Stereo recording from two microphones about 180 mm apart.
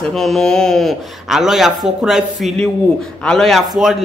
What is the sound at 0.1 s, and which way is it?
Speech, centre (ahead or behind).